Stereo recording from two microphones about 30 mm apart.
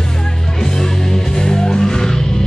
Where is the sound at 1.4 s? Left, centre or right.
Centre.